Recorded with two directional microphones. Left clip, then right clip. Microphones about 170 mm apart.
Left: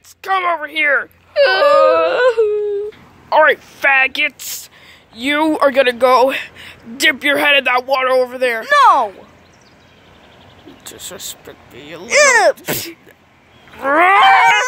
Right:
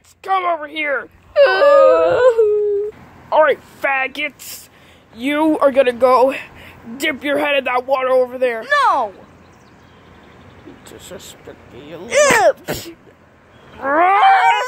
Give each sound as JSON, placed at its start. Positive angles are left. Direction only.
{"t": 0.2, "sound": "speech", "side_deg": 0}
{"t": 1.3, "sound": "speech", "side_deg": -50}
{"t": 1.7, "sound": "a sound", "side_deg": 5}
{"t": 3.3, "sound": "speech", "side_deg": 5}
{"t": 8.6, "sound": "speech", "side_deg": 35}
{"t": 10.9, "sound": "speech", "side_deg": 0}
{"t": 12.1, "sound": "speech", "side_deg": 30}
{"t": 13.7, "sound": "wild animals", "side_deg": 15}
{"t": 14.2, "sound": "a sound", "side_deg": 40}